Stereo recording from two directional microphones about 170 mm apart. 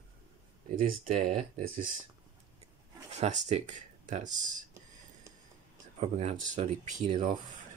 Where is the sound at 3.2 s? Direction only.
45° right (ahead or behind).